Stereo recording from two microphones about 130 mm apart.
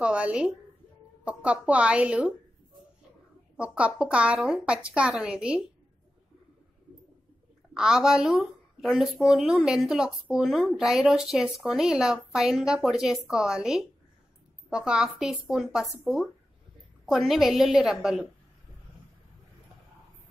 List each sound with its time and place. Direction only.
0.0 s speech: 10° right (ahead or behind)
3.5 s speech: 10° right (ahead or behind)
7.7 s a woman's voice: 5° right (ahead or behind)